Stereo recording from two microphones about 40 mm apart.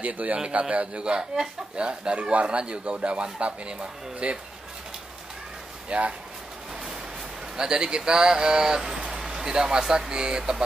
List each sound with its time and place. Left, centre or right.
0.0 s a man's voice: right
5.9 s speech: right
7.5 s speech: centre